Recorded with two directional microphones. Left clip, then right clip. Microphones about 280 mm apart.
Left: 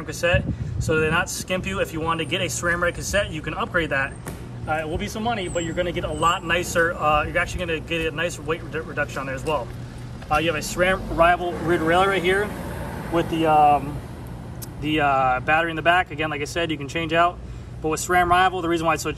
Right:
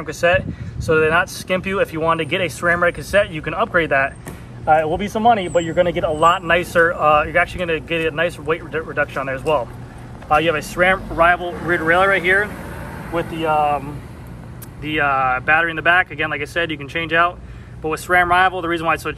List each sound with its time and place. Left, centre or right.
0.0 s speech: centre
12.5 s vehicle: left
13.4 s speech: left